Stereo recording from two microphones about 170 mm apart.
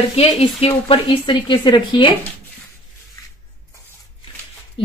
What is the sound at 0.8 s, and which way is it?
Speech, 30° left (ahead or behind).